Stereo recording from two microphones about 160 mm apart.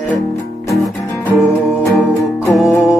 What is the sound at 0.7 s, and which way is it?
Music, 15° left (ahead or behind).